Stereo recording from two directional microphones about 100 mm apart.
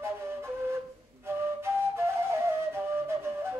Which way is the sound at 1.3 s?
25° right (ahead or behind).